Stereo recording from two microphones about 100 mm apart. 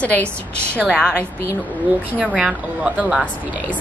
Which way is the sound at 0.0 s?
10° left (ahead or behind).